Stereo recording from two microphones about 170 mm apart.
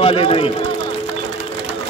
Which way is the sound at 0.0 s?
35° left (ahead or behind).